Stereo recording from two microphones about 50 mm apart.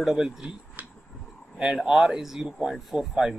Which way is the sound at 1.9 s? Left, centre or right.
Centre.